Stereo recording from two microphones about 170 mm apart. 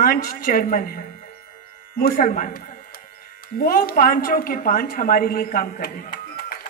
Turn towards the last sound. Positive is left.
turn(degrees=60)  # may be behind; listen again after turning